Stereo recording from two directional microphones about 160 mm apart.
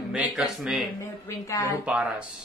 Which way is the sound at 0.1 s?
5° right (ahead or behind).